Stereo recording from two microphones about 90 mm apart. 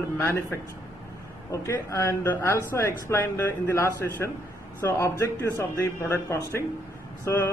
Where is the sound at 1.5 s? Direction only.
35° left (ahead or behind).